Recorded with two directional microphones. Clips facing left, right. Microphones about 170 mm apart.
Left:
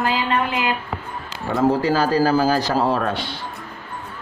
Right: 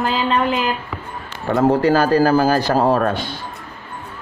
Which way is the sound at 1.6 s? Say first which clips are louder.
Right 3 dB; 55° right (ahead or behind).